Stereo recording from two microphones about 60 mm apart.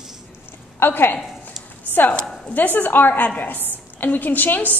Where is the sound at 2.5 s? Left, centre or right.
Left.